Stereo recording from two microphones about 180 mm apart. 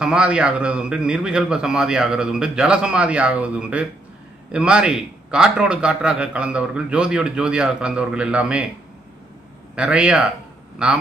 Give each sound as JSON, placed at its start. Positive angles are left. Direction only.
{"t": 0.0, "sound": "a man's voice", "side_deg": -5}
{"t": 9.8, "sound": "a man's voice", "side_deg": -5}